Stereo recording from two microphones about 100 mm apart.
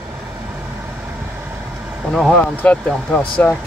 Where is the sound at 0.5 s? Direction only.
15° right (ahead or behind).